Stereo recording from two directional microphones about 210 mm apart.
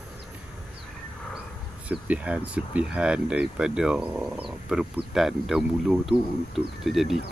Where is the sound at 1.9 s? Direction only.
5° right (ahead or behind).